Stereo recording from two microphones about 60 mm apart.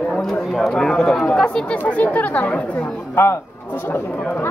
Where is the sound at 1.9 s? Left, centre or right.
Left.